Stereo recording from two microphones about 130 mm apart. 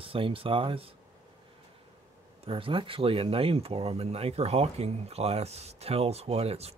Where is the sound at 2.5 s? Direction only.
45° right (ahead or behind).